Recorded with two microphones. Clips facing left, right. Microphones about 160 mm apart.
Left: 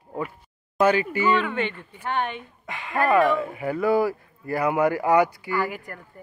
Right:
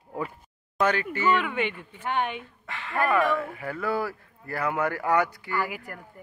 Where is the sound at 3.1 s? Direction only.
20° left (ahead or behind).